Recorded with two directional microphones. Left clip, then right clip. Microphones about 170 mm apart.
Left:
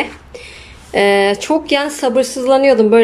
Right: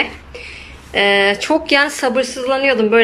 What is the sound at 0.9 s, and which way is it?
A woman's voice, 20° left (ahead or behind).